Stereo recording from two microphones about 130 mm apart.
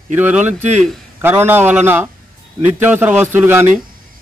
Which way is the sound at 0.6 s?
65° right (ahead or behind).